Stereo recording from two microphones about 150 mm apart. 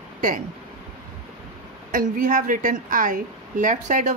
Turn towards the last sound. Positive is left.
turn(degrees=-55)  # may be behind; listen again after turning